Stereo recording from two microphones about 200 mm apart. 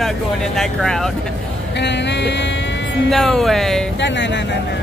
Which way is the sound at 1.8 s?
60° left (ahead or behind).